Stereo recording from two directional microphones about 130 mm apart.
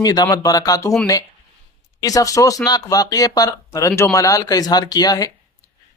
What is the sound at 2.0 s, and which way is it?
Speech, 25° left (ahead or behind).